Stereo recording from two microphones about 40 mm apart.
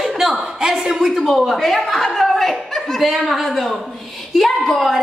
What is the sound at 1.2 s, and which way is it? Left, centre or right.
A woman's voice, centre.